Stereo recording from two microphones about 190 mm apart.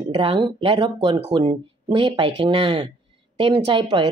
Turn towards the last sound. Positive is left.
turn(degrees=-25)  # may be behind; listen again after turning